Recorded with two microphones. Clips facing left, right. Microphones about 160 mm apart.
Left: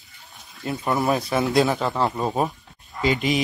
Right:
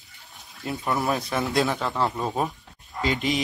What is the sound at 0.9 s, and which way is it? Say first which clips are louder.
Speech: left 4 dB; centre (ahead or behind).